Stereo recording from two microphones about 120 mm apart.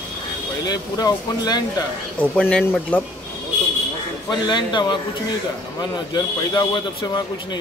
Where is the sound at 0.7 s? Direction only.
35° left (ahead or behind).